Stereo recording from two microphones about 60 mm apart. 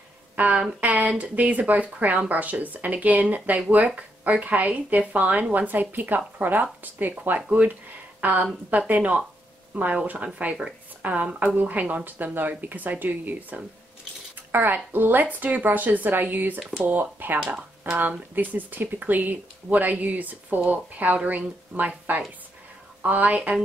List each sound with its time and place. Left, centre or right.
0.4 s speech: centre
7.4 s a woman's voice: right